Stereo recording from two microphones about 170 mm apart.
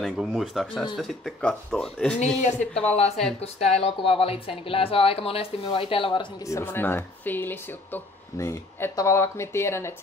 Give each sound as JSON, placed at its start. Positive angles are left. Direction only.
{"t": 0.0, "sound": "speech", "side_deg": 0}
{"t": 3.3, "sound": "speech", "side_deg": 40}
{"t": 6.4, "sound": "speech", "side_deg": 15}